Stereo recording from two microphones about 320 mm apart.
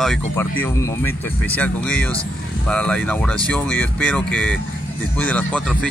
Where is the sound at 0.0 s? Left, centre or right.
Centre.